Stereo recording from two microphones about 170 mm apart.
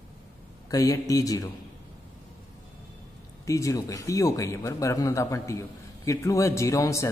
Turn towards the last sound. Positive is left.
turn(degrees=20)  # may be behind; listen again after turning